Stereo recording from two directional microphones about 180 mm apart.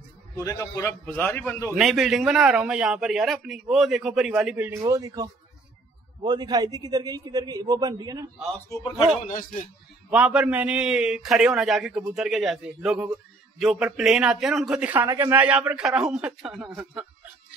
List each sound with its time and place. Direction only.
0.4 s a man's voice: 20° left (ahead or behind)
1.8 s a man's voice: centre (ahead or behind); by 8.3 s 20° right (ahead or behind)
9.3 s speech: 50° left (ahead or behind)
10.0 s a man's voice: 5° right (ahead or behind)